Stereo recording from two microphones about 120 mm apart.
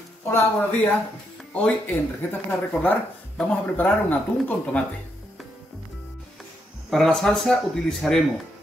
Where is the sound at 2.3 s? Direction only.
15° left (ahead or behind).